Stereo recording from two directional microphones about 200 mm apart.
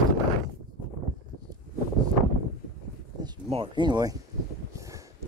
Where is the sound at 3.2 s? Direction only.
25° right (ahead or behind).